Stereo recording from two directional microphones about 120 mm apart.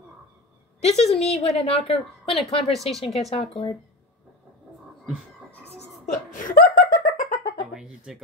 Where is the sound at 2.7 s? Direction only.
Centre (ahead or behind).